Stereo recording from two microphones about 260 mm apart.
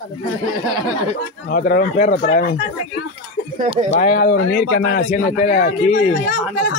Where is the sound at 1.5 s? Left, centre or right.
Left.